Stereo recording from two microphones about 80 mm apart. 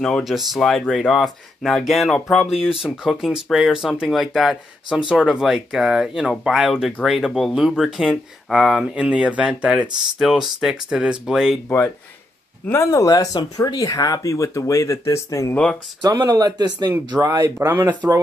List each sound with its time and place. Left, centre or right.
0.0 s speech: centre
10.1 s speech: centre
12.7 s speech: left
15.5 s speech: centre
16.0 s speech: right
18.0 s speech: right